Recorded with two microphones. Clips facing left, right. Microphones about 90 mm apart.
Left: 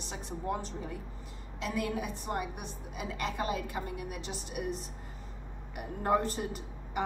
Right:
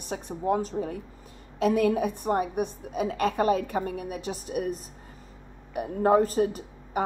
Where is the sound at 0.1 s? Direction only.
45° right (ahead or behind).